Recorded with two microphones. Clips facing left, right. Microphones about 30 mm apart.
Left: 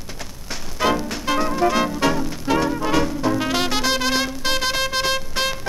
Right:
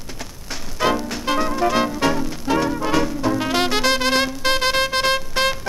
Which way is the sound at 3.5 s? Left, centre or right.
Centre.